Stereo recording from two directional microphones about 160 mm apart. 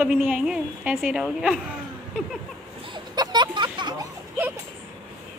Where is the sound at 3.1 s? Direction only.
25° right (ahead or behind).